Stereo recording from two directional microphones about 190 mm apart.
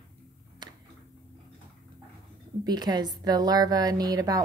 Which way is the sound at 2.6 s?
20° right (ahead or behind).